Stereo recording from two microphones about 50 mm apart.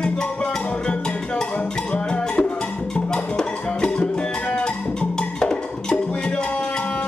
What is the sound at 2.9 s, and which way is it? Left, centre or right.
Music, centre.